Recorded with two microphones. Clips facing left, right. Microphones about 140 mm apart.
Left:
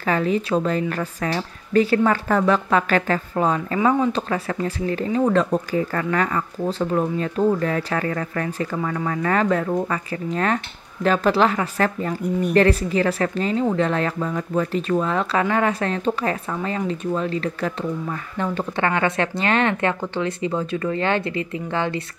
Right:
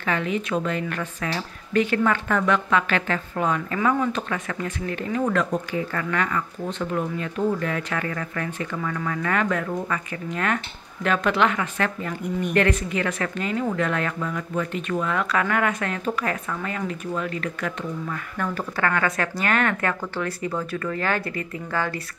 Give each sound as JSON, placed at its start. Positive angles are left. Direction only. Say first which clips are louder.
{"t": 0.0, "sound": "a woman's voice", "louder": "left 4 dB", "side_deg": 35}